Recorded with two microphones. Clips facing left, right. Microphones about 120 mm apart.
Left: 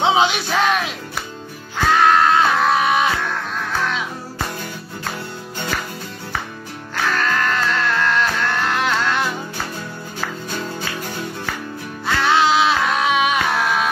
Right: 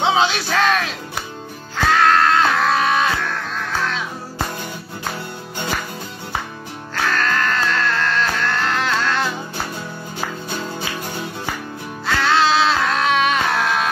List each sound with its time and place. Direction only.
0.0 s music: 15° left (ahead or behind)
7.1 s music: 10° left (ahead or behind)
12.1 s music: 20° left (ahead or behind)